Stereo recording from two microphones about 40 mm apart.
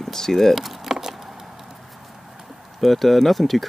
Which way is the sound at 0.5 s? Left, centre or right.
Centre.